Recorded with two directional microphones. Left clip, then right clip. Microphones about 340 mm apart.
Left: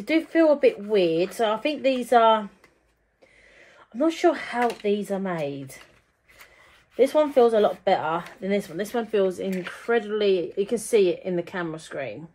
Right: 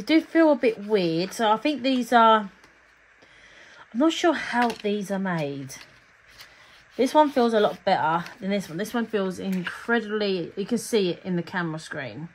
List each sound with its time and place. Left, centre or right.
0.0 s a woman's voice: centre
4.0 s a woman's voice: centre
7.0 s speech: right